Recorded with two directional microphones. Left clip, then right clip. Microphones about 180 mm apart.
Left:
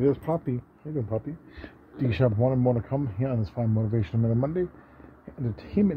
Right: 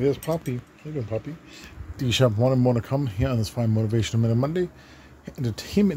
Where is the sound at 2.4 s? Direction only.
15° right (ahead or behind).